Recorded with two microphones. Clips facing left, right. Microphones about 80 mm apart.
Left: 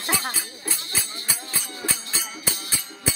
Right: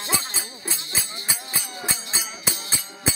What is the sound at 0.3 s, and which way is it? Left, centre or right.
Music, right.